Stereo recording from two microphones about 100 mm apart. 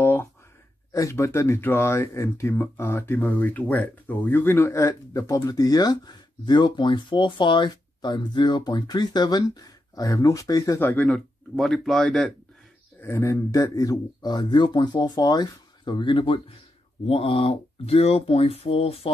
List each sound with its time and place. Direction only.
0.0 s a sound: 20° left (ahead or behind)
0.9 s speech: 30° left (ahead or behind)
10.8 s speech: 15° left (ahead or behind)
13.0 s speech: 30° left (ahead or behind)
13.6 s speech: 40° left (ahead or behind); by 19.1 s 75° left (ahead or behind)